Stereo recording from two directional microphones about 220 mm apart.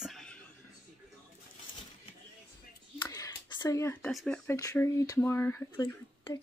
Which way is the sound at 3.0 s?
15° left (ahead or behind).